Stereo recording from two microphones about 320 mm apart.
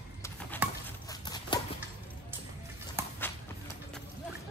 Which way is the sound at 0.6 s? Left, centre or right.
Centre.